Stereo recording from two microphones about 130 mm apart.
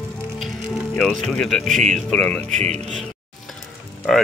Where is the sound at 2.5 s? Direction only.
60° right (ahead or behind).